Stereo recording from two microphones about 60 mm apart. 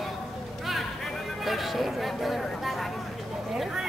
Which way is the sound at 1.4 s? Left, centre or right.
Centre.